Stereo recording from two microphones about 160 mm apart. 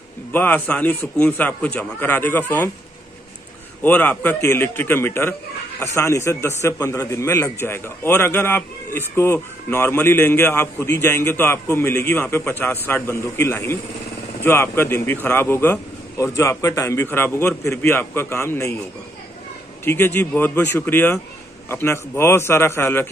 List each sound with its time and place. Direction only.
0.3 s a man's voice: 10° left (ahead or behind)
3.8 s a man's voice: 10° left (ahead or behind)
19.8 s a man's voice: 15° left (ahead or behind)